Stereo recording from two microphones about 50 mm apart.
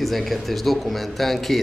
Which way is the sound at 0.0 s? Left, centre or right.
Centre.